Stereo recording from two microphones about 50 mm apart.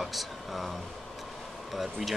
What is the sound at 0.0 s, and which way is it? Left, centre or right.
Vehicle, centre.